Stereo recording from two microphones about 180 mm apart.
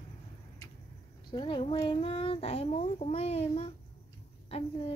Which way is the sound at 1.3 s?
25° left (ahead or behind).